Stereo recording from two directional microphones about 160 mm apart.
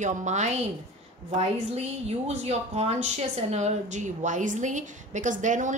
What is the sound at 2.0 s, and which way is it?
A woman's voice, 40° right (ahead or behind).